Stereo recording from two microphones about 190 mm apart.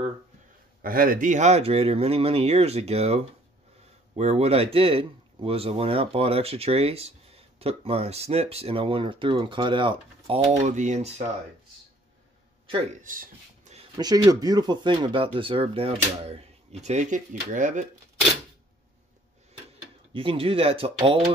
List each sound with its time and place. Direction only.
0.8 s speech: 50° right (ahead or behind)
13.0 s speech: 45° right (ahead or behind)
13.7 s speech: 20° right (ahead or behind); by 17.8 s 40° right (ahead or behind)
20.1 s speech: 30° right (ahead or behind)